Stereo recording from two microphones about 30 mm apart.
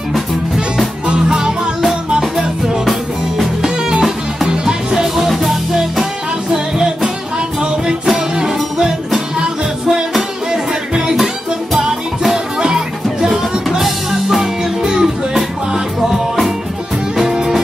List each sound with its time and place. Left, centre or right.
2.3 s music: centre
4.6 s music: centre
5.2 s music: centre
8.4 s music: right
11.8 s music: centre
12.5 s music: right
13.3 s music: centre
14.4 s music: centre
17.2 s music: centre